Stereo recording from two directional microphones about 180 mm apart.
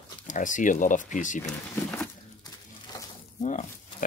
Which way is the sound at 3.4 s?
45° left (ahead or behind).